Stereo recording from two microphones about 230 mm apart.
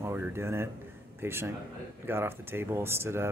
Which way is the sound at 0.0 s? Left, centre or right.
Centre.